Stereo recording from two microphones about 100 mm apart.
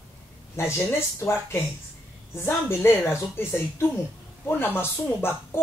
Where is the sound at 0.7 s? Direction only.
25° left (ahead or behind).